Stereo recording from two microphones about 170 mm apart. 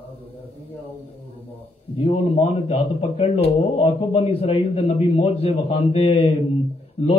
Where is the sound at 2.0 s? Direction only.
30° left (ahead or behind).